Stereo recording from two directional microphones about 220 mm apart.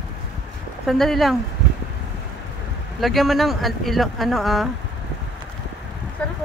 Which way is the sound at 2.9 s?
Centre (ahead or behind).